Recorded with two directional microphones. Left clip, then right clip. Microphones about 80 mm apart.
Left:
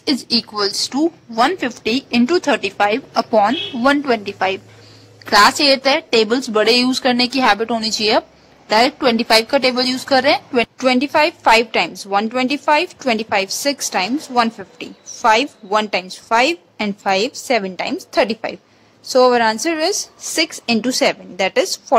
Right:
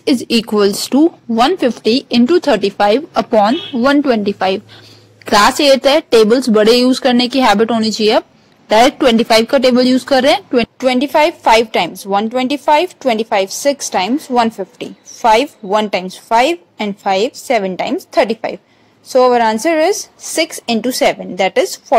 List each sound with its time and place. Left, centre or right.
0.0 s a woman's voice: right
2.2 s a woman's voice: right
3.3 s a woman's voice: right
5.2 s a woman's voice: right; by 20.1 s centre
20.2 s a woman's voice: right
21.6 s a woman's voice: centre